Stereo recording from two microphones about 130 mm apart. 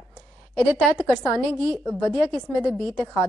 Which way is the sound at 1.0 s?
5° left (ahead or behind).